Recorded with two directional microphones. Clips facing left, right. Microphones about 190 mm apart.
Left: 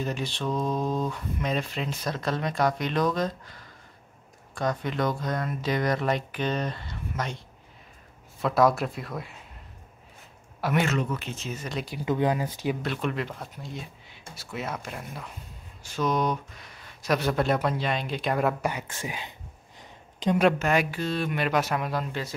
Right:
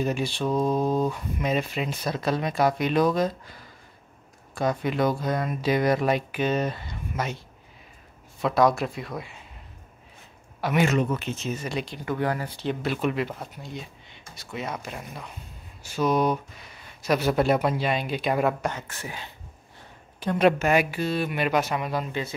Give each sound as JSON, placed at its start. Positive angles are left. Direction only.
{"t": 0.0, "sound": "speech", "side_deg": -10}
{"t": 8.4, "sound": "speech", "side_deg": 0}
{"t": 10.6, "sound": "speech", "side_deg": 0}
{"t": 11.8, "sound": "speech", "side_deg": 10}
{"t": 12.1, "sound": "speech", "side_deg": 20}
{"t": 12.8, "sound": "speech", "side_deg": -5}
{"t": 18.6, "sound": "speech", "side_deg": 10}
{"t": 19.8, "sound": "a sound", "side_deg": 20}
{"t": 20.5, "sound": "speech", "side_deg": -10}